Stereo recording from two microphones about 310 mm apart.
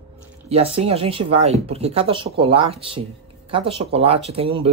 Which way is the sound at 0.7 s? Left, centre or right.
Centre.